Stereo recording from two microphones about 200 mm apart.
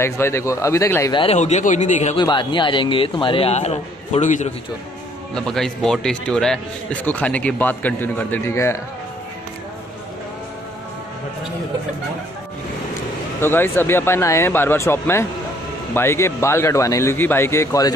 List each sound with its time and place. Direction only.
0.0 s a man's voice: 15° left (ahead or behind)
1.1 s a man's voice: 30° left (ahead or behind)
2.1 s speech: 25° left (ahead or behind)
5.3 s a man's voice: centre (ahead or behind)
13.4 s a man's voice: 10° left (ahead or behind)